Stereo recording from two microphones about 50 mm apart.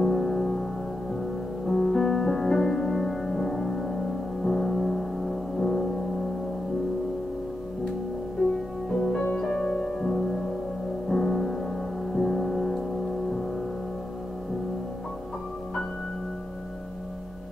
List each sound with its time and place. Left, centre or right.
0.0 s music: centre
1.7 s music: centre
8.4 s music: centre